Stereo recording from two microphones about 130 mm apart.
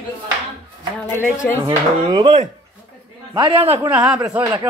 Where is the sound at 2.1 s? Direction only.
35° right (ahead or behind).